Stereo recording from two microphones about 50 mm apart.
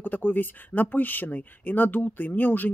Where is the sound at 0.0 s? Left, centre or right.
Left.